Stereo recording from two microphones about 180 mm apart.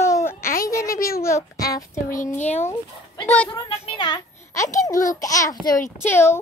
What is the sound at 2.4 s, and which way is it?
Speech, 40° left (ahead or behind).